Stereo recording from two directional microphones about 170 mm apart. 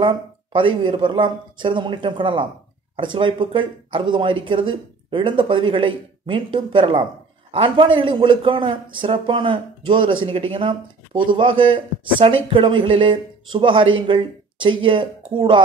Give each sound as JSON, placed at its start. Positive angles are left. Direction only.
{"t": 0.0, "sound": "speech", "side_deg": -30}